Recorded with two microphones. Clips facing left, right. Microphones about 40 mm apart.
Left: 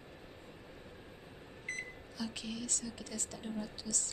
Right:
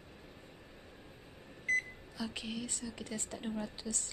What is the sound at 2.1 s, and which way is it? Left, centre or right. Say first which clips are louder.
A woman's voice: right 1 dB; centre.